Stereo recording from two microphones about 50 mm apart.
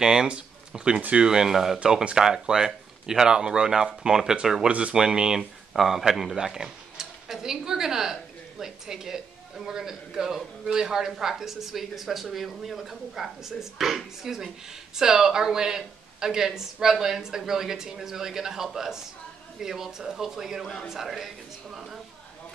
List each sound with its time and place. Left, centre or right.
0.0 s speech: centre
4.6 s speech: right
5.7 s speech: centre